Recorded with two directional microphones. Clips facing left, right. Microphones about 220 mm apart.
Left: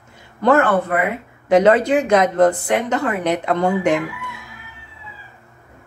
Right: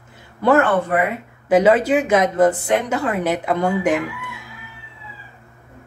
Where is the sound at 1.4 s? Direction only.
5° right (ahead or behind).